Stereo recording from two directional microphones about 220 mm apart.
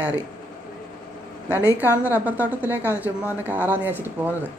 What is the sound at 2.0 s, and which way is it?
A woman's voice, 5° right (ahead or behind).